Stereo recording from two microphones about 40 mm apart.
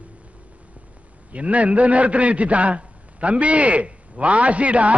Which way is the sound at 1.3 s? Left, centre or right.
Right.